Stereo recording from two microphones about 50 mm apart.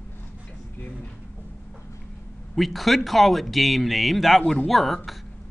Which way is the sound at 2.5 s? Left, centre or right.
Centre.